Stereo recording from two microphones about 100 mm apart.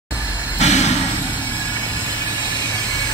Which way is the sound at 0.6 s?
90° left.